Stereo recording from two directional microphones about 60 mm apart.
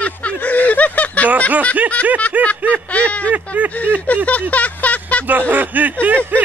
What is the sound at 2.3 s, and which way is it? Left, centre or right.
Snicker, right.